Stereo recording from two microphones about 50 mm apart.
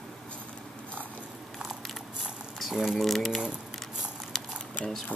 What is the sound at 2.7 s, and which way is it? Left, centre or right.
Speech, centre.